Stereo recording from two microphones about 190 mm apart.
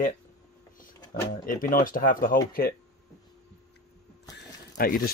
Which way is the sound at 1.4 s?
50° left (ahead or behind).